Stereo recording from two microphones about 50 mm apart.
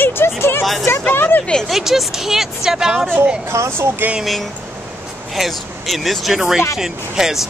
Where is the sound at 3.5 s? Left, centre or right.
Right.